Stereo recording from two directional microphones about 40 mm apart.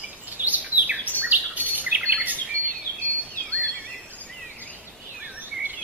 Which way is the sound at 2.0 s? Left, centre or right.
Right.